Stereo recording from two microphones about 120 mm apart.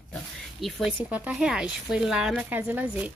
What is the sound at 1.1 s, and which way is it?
A woman's voice, 10° right (ahead or behind).